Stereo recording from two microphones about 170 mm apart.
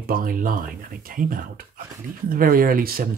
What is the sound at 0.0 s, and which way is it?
Speech, 55° right (ahead or behind).